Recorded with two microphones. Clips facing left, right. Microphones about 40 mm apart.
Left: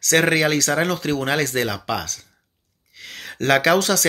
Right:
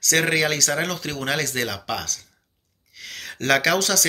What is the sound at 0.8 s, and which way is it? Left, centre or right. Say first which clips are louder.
Speech: left 6 dB; left.